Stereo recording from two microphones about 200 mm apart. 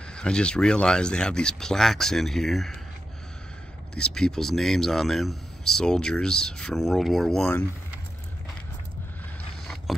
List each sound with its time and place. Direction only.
0.1 s speech: 5° left (ahead or behind)
3.9 s speech: 5° left (ahead or behind)